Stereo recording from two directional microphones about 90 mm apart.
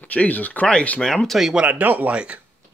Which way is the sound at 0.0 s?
15° left (ahead or behind).